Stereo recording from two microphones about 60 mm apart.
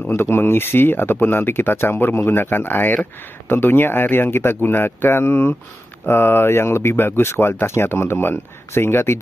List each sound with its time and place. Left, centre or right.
0.1 s speech: left